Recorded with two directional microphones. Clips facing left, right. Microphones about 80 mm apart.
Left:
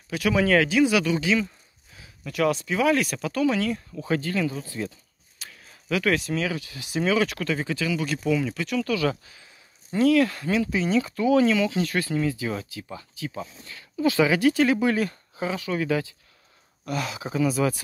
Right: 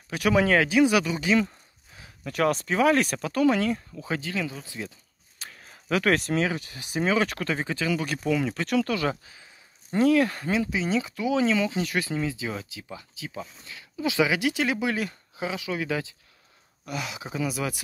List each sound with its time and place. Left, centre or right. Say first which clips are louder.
0.1 s speech: right 1 dB; right
0.5 s speech: left 3 dB; right
3.7 s speech: left 4 dB; centre
5.4 s a sound: right 1 dB; right
6.4 s speech: right 1 dB; right
8.6 s speech: right 2 dB; right
9.1 s speech: even; centre
10.7 s speech: left 3 dB; centre